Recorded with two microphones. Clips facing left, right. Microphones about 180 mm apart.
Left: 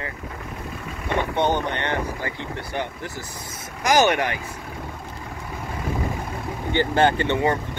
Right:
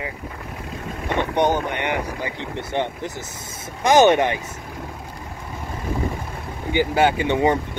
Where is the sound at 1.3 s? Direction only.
10° right (ahead or behind).